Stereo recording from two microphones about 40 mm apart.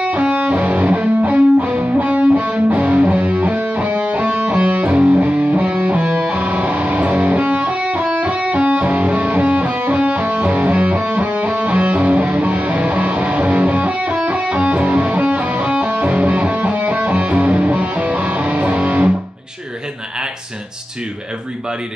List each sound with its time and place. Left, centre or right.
0.3 s music: right